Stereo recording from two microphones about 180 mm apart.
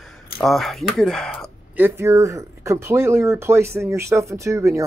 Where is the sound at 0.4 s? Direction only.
Centre (ahead or behind).